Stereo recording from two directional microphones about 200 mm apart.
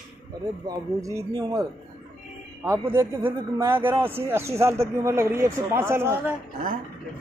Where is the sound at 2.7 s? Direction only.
10° right (ahead or behind).